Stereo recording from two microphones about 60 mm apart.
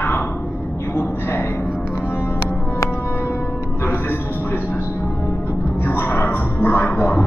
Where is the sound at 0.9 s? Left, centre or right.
Left.